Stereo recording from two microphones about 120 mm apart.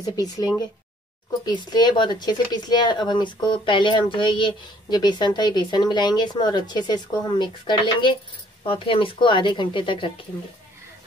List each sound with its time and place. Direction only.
0.0 s speech: 35° left (ahead or behind)
1.4 s speech: 35° left (ahead or behind)